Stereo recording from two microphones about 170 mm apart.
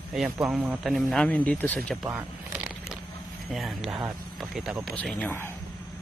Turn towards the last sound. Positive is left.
turn(degrees=10)  # may be behind; listen again after turning